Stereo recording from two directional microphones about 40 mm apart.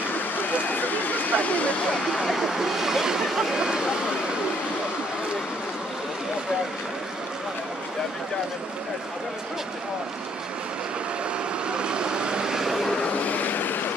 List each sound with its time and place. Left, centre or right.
0.8 s a sound: left
2.2 s speech: centre
11.7 s vehicle: right; by 12.9 s centre
13.1 s vehicle: left